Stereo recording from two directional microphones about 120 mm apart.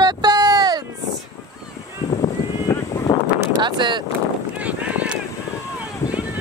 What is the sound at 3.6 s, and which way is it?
Speech, 40° right (ahead or behind).